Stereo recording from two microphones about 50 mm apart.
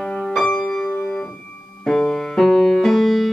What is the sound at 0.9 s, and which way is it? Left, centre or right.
Keyboard, centre.